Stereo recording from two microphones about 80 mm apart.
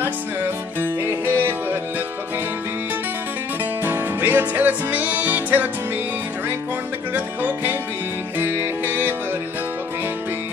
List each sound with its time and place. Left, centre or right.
0.7 s music: right
3.8 s music: right
7.2 s music: right